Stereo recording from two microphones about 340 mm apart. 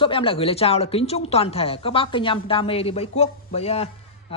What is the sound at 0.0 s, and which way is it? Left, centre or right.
Speech, centre.